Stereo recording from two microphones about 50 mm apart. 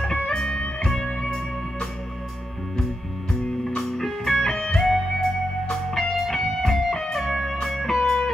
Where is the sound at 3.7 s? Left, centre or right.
Centre.